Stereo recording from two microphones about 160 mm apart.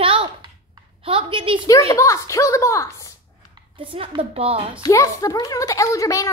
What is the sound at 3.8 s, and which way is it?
Speech, 35° right (ahead or behind).